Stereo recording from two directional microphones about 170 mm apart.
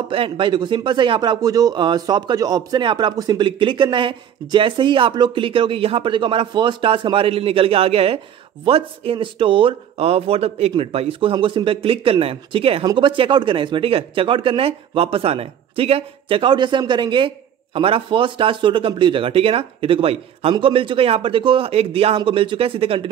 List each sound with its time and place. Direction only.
0.1 s speech: 30° right (ahead or behind)